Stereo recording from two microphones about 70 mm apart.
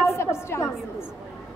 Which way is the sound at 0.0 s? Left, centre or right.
Left.